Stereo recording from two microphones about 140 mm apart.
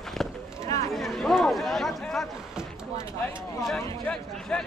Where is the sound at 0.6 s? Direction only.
25° left (ahead or behind).